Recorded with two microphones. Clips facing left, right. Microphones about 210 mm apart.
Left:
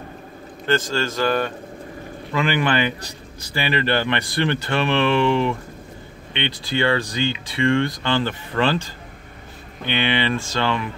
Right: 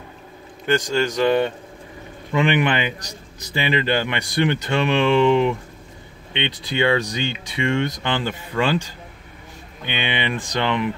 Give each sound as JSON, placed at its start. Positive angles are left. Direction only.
{"t": 0.7, "sound": "speech", "side_deg": -15}
{"t": 9.8, "sound": "speech", "side_deg": -15}